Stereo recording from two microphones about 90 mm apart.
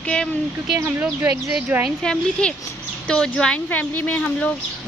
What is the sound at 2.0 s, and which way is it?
Speech, 10° left (ahead or behind).